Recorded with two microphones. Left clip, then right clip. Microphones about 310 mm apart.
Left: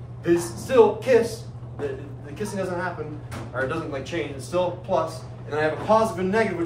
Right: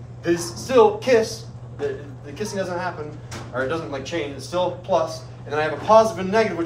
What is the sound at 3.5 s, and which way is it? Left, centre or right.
A man's voice, right.